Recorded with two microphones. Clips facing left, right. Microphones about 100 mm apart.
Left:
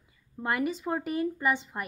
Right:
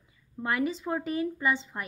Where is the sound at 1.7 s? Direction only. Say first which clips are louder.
Left 1 dB; 15° left (ahead or behind).